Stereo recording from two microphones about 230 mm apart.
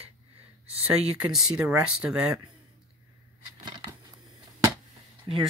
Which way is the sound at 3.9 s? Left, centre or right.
Centre.